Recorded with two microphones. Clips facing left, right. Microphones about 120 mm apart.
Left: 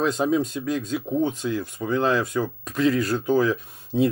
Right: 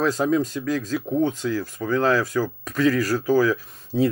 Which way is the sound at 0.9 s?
Centre (ahead or behind).